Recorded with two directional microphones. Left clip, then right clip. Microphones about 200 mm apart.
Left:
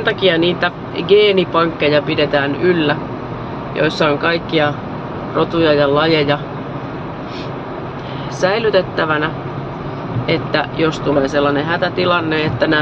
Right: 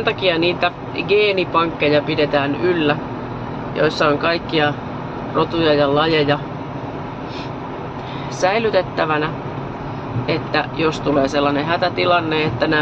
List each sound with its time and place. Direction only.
0.0 s speech: 10° left (ahead or behind)
8.4 s speech: 5° left (ahead or behind)